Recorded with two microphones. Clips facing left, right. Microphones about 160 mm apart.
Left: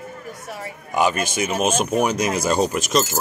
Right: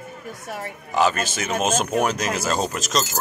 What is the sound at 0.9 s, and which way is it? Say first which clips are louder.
Speech: left 1 dB; 15° left (ahead or behind).